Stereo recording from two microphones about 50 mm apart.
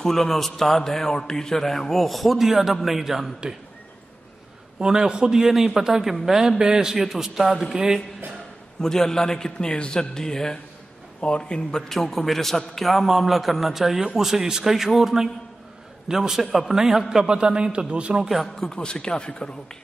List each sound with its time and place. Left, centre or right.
0.0 s a man's voice: centre
4.7 s a man's voice: centre
8.8 s a man's voice: centre
11.9 s a man's voice: centre
17.3 s speech: centre
18.6 s a man's voice: centre